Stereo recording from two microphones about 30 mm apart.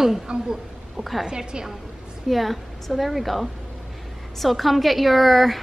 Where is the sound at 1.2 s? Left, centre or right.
Right.